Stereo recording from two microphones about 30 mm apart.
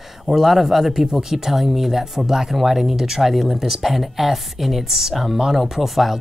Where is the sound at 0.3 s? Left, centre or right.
Centre.